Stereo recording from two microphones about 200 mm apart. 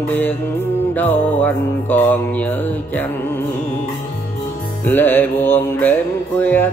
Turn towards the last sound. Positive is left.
turn(degrees=10)  # may be behind; listen again after turning